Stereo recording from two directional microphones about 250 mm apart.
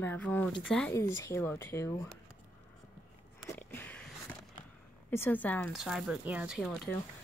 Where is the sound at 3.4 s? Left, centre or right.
Centre.